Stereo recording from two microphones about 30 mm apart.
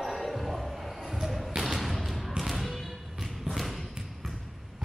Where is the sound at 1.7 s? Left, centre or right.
Centre.